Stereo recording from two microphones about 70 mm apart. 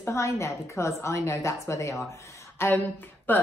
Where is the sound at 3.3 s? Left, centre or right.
Left.